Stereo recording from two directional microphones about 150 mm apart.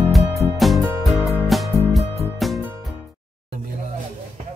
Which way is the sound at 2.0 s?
45° right (ahead or behind).